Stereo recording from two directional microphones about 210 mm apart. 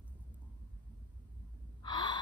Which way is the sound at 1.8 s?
20° left (ahead or behind).